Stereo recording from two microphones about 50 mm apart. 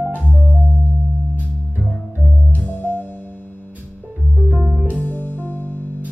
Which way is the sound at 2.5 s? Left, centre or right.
Left.